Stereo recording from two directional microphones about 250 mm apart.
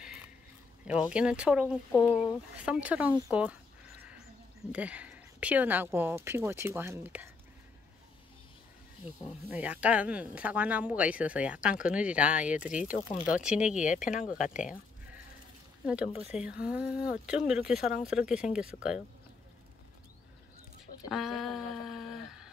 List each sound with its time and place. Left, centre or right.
0.8 s speech: centre
1.9 s speech: centre
2.5 s speech: centre
4.7 s speech: centre
9.5 s speech: centre
13.8 s speech: left
16.2 s speech: centre
21.1 s a sound: centre